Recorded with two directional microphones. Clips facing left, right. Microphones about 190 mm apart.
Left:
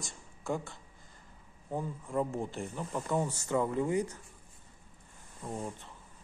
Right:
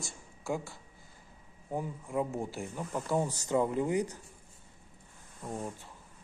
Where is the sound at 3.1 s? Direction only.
20° right (ahead or behind).